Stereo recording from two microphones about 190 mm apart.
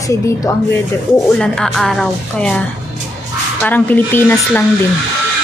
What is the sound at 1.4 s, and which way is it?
A woman's voice, centre (ahead or behind).